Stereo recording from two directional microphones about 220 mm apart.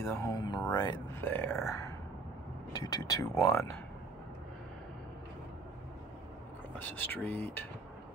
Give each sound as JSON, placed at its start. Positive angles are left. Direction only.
{"t": 0.0, "sound": "speech", "side_deg": 15}
{"t": 6.8, "sound": "speech", "side_deg": 10}